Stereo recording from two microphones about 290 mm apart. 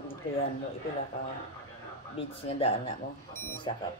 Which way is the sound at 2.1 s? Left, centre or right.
Centre.